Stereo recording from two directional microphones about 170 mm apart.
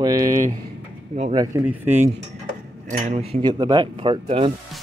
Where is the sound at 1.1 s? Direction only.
45° right (ahead or behind).